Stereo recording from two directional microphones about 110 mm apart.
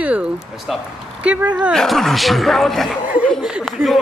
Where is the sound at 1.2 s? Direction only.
15° right (ahead or behind).